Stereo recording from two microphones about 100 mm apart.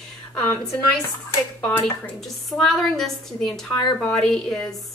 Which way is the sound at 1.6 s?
20° left (ahead or behind).